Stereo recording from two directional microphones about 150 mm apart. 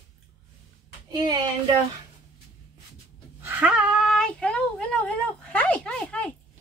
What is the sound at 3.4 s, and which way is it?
Speech, 10° right (ahead or behind).